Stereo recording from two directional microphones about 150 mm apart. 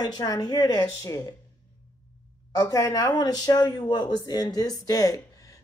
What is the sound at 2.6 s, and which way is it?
Speech, 25° left (ahead or behind).